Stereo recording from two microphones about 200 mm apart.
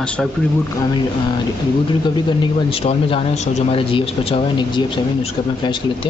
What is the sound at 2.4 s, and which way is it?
Speech, 30° left (ahead or behind).